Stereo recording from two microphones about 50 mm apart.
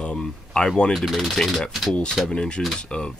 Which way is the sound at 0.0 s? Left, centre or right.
Left.